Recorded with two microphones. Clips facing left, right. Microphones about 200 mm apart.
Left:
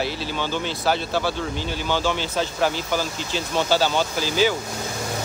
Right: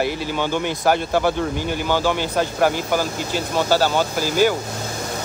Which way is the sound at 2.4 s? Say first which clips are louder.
Right 4 dB; 50° right (ahead or behind).